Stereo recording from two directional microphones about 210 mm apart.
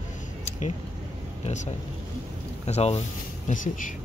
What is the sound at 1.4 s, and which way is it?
Speech, 35° left (ahead or behind).